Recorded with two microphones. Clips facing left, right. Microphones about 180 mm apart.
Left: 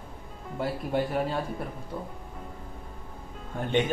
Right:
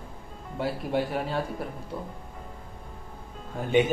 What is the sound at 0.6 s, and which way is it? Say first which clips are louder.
Speech: right 1 dB; centre (ahead or behind).